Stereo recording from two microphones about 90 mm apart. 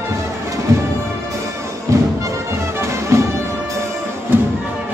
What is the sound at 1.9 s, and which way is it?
Music, 35° right (ahead or behind).